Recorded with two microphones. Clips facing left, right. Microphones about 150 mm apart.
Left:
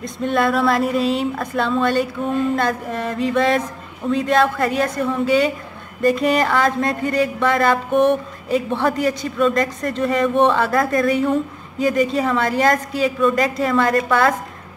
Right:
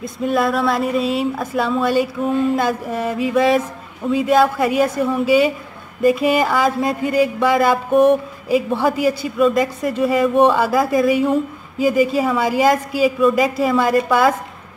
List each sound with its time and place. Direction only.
0.0 s speech: 5° right (ahead or behind)